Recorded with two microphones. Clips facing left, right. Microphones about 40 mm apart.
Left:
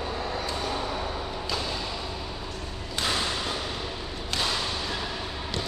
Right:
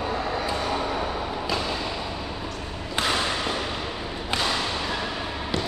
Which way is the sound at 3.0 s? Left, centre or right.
Right.